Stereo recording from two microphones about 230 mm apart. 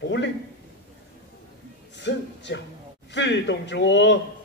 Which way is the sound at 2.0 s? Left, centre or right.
Left.